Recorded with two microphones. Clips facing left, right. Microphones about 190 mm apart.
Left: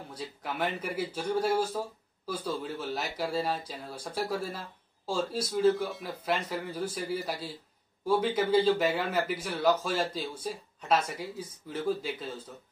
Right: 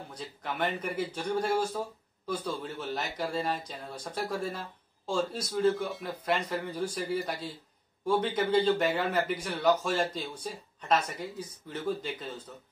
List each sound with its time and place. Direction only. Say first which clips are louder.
0.1 s a man's voice: left 1 dB; 5° left (ahead or behind)